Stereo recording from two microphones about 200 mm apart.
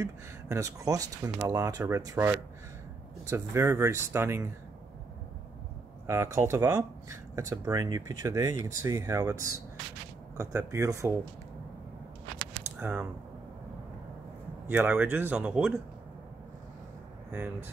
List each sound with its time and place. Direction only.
0.0 s speech: 15° right (ahead or behind)
6.0 s speech: 15° right (ahead or behind)
12.7 s speech: 10° right (ahead or behind)
14.7 s speech: 10° right (ahead or behind)
17.3 s speech: 10° right (ahead or behind)